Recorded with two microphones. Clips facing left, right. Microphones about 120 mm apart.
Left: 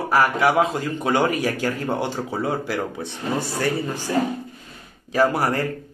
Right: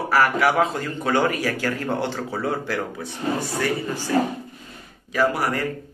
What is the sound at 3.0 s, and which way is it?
Speech, 30° left (ahead or behind).